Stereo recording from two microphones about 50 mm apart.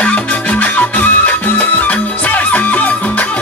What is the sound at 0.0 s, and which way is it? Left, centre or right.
Music, left.